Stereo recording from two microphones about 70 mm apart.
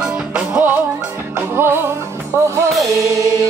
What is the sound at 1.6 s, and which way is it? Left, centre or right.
Music, right.